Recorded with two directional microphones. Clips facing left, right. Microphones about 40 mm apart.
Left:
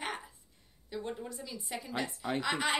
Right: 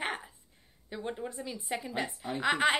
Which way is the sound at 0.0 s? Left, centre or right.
Right.